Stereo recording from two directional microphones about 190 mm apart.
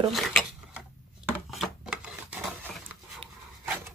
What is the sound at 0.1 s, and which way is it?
Speech, centre (ahead or behind).